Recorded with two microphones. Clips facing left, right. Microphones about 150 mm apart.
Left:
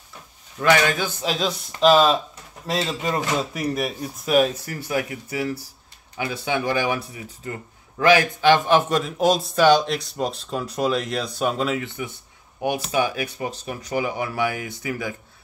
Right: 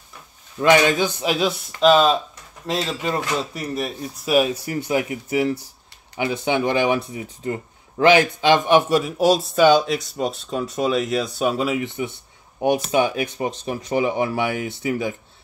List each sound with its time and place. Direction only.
0.6 s speech: 20° right (ahead or behind)
1.8 s speech: centre (ahead or behind)
4.6 s speech: 20° right (ahead or behind)